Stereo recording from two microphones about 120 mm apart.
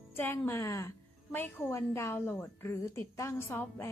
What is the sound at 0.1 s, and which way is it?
A woman's voice, 15° left (ahead or behind).